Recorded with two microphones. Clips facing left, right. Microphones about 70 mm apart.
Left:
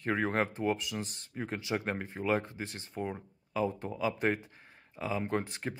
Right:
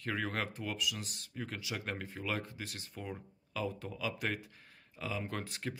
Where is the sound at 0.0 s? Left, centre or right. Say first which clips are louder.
Left 6 dB; left.